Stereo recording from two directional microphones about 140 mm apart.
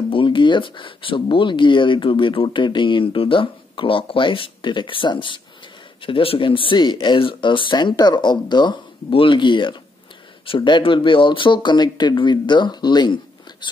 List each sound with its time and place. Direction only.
0.1 s speech: 35° left (ahead or behind)